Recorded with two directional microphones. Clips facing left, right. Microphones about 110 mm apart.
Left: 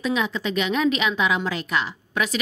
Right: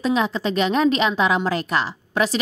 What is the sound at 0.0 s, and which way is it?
A woman's voice, 35° right (ahead or behind).